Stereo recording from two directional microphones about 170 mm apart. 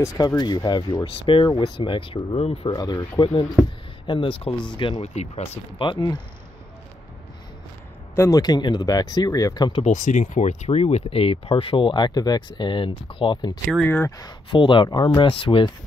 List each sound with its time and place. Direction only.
0.0 s speech: 20° left (ahead or behind)
8.2 s speech: 20° left (ahead or behind)
9.9 s speech: 45° left (ahead or behind); by 13.6 s 25° left (ahead or behind)
13.7 s speech: 10° left (ahead or behind); by 15.7 s 30° left (ahead or behind)